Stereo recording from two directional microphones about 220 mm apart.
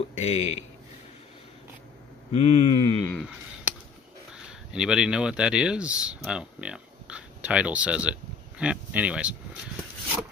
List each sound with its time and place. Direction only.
0.1 s speech: 30° left (ahead or behind)
2.3 s speech: 25° left (ahead or behind)
3.1 s speech: centre (ahead or behind)
4.7 s speech: 5° right (ahead or behind)